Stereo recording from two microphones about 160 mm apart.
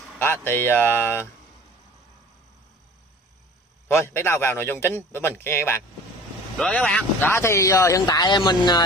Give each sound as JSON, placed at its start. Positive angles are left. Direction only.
{"t": 0.2, "sound": "a man's voice", "side_deg": 15}
{"t": 3.9, "sound": "a man's voice", "side_deg": 15}
{"t": 6.6, "sound": "speech", "side_deg": 5}